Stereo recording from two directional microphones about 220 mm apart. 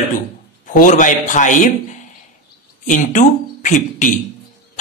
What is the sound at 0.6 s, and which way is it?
A man's voice, 35° left (ahead or behind).